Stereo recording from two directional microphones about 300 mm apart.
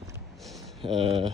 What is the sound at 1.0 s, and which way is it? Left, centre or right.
Speech, centre.